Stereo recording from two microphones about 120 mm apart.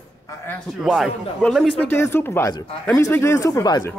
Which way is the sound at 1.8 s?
20° left (ahead or behind).